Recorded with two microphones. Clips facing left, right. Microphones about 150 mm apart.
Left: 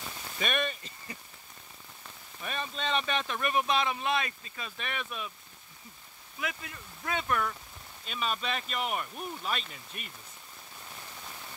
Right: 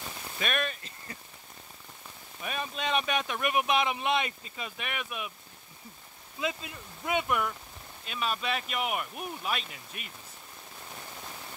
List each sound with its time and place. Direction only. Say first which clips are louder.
0.4 s speech: even; centre (ahead or behind)
2.4 s speech: right 1 dB; 10° right (ahead or behind)
6.4 s speech: right 4 dB; 20° right (ahead or behind); by 10.1 s 5° right (ahead or behind)